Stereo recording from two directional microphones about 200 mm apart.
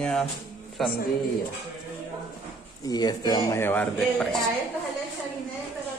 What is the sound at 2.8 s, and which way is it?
Speech, 20° left (ahead or behind).